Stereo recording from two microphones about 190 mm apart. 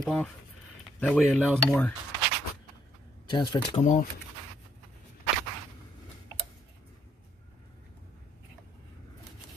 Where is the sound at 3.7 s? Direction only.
40° left (ahead or behind).